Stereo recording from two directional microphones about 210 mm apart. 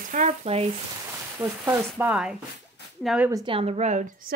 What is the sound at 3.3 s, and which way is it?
Speech, 25° right (ahead or behind).